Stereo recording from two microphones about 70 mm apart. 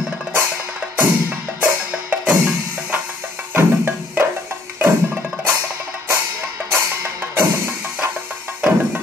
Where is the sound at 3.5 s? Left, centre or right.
Right.